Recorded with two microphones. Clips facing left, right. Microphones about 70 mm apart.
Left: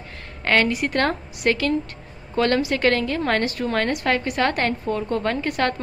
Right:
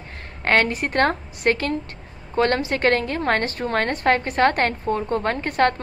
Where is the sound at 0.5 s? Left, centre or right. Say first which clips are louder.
Even; right.